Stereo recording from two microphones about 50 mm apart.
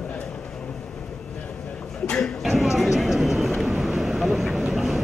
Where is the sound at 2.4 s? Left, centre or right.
Centre.